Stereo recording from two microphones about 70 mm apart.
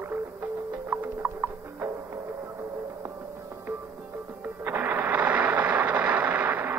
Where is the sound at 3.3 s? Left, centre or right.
Right.